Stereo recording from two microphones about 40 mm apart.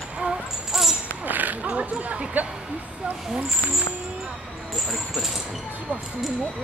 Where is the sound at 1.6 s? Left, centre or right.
Right.